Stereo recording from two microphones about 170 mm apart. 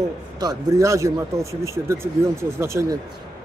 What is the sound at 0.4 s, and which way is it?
Speech, 20° right (ahead or behind).